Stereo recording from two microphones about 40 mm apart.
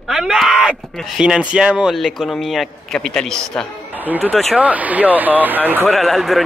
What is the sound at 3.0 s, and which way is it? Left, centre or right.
Speech, centre.